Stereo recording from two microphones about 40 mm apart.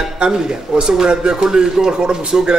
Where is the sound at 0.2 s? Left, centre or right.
Centre.